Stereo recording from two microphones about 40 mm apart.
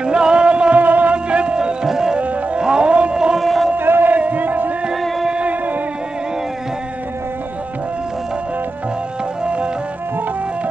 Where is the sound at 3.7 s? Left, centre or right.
Right.